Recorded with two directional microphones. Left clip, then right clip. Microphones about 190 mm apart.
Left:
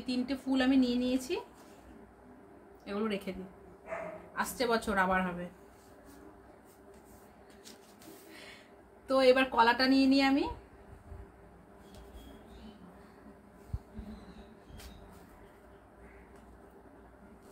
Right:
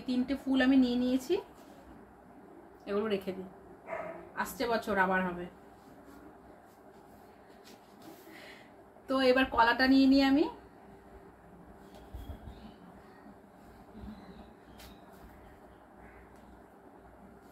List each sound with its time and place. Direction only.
0.0 s speech: 10° left (ahead or behind)
2.8 s speech: 10° left (ahead or behind)
4.4 s a woman's voice: 20° left (ahead or behind)
9.0 s speech: 10° left (ahead or behind)